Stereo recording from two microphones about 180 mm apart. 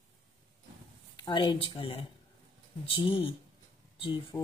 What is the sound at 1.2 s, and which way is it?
Speech, 25° left (ahead or behind).